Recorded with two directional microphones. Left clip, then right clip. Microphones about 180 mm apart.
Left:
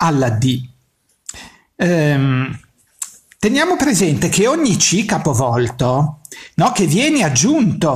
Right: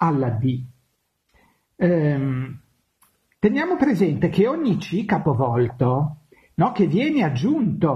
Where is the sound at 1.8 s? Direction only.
35° left (ahead or behind).